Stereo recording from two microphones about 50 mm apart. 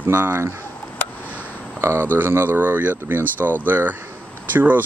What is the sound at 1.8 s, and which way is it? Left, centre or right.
Speech, right.